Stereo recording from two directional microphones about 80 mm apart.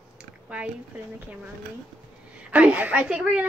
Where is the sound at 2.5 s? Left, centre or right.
Centre.